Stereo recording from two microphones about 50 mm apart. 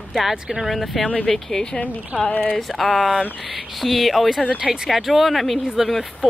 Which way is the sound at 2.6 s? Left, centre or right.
Centre.